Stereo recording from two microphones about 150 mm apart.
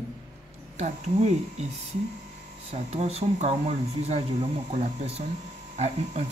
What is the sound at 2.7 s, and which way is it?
Speech, 45° right (ahead or behind).